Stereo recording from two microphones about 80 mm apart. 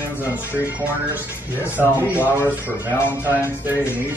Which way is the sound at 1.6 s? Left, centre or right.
Right.